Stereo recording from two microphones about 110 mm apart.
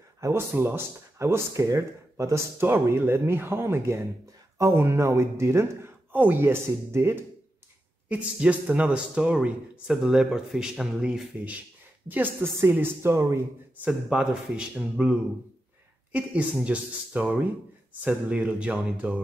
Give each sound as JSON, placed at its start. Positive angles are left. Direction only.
{"t": 0.2, "sound": "speech", "side_deg": -25}
{"t": 8.1, "sound": "a man's voice", "side_deg": -10}
{"t": 13.8, "sound": "a man's voice", "side_deg": -5}